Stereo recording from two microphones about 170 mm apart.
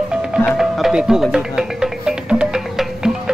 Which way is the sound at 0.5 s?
Centre (ahead or behind).